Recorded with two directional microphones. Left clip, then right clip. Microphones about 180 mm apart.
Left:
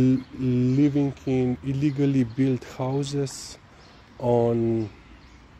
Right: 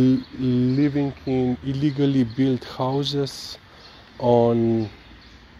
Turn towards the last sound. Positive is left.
turn(degrees=0)  # may be behind; listen again after turning